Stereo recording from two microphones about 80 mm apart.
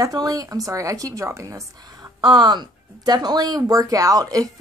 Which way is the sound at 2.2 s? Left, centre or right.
Right.